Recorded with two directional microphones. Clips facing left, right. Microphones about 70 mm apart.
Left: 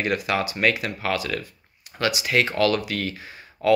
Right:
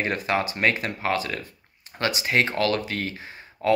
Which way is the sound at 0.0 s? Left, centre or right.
Right.